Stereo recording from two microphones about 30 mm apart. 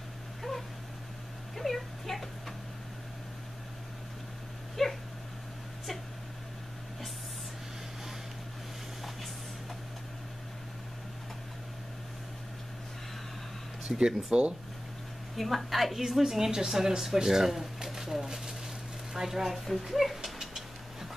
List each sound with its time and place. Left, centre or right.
0.4 s dog: centre
1.6 s a sound: centre
4.8 s dog: centre
13.8 s speech: right
15.3 s a woman's voice: centre
17.8 s a sound: centre
19.2 s a woman's voice: centre
19.5 s speech: centre
20.3 s a sound: centre